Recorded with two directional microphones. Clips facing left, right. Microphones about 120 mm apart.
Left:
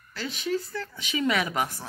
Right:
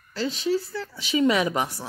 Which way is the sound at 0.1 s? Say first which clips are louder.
Right 5 dB; 30° right (ahead or behind).